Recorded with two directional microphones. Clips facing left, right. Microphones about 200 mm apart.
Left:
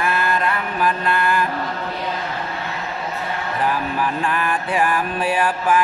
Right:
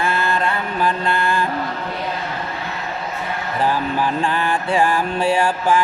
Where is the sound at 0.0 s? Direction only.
25° right (ahead or behind).